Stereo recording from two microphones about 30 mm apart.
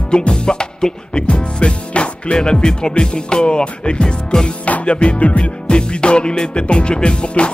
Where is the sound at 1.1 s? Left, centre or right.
Left.